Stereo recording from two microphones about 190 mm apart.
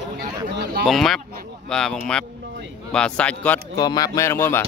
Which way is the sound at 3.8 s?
20° left (ahead or behind).